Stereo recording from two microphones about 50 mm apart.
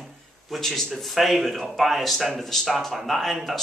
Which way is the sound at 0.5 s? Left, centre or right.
Centre.